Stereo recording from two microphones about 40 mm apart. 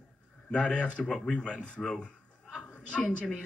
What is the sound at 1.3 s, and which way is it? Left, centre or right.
Speech, left.